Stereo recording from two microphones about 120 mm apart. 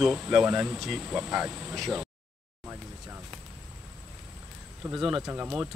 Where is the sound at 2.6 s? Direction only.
20° right (ahead or behind).